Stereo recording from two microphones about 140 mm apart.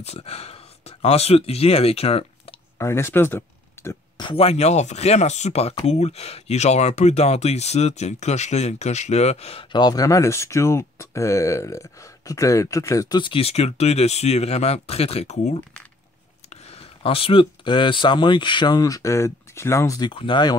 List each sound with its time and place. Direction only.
0.0 s speech: 50° left (ahead or behind)
2.8 s speech: 20° left (ahead or behind)
4.2 s speech: 40° left (ahead or behind); by 13.2 s 25° left (ahead or behind)
13.2 s speech: 40° left (ahead or behind); by 20.1 s 20° left (ahead or behind)
20.1 s speech: 35° left (ahead or behind)